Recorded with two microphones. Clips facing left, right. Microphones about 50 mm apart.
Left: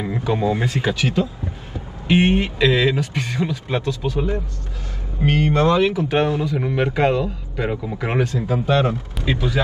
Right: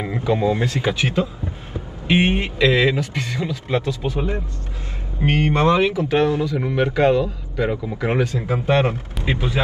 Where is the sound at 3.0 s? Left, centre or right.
Left.